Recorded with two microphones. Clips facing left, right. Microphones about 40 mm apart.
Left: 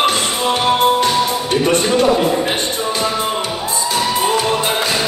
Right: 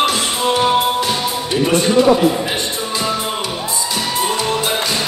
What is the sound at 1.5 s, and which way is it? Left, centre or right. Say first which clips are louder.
Music: right 2 dB; left.